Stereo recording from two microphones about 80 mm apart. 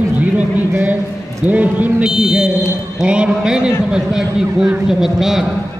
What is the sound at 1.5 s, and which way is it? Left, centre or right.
Speech, centre.